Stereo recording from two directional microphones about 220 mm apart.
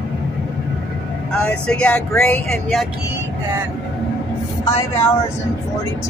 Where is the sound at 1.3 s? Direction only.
5° left (ahead or behind).